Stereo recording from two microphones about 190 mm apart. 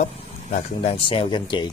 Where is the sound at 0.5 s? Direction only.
30° left (ahead or behind).